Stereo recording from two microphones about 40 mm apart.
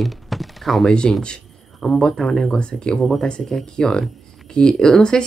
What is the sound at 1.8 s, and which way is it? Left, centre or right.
Speech, left.